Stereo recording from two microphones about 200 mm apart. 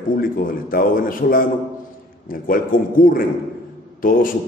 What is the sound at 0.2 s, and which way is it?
A man's voice, 45° left (ahead or behind).